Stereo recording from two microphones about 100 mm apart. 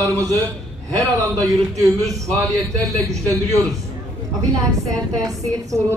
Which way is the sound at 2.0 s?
5° left (ahead or behind).